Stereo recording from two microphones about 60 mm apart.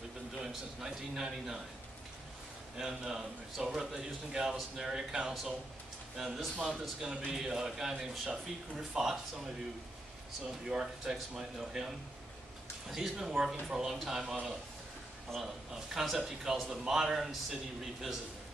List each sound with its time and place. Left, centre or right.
0.4 s a man's voice: centre
2.8 s a man's voice: centre
7.1 s a man's voice: centre
10.7 s a man's voice: centre
12.9 s a man's voice: centre
15.3 s a man's voice: centre